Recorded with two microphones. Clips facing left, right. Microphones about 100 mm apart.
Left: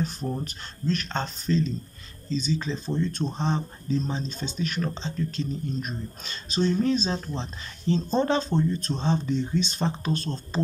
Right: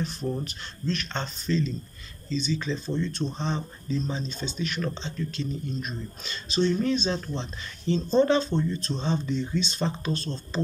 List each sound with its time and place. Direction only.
0.4 s speech: 45° left (ahead or behind)
6.8 s speech: 35° left (ahead or behind); by 10.6 s 50° left (ahead or behind)